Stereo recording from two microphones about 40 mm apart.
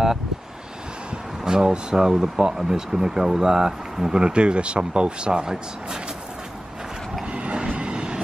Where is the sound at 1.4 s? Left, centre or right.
Centre.